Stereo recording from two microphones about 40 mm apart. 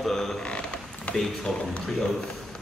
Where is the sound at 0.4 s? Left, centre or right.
Left.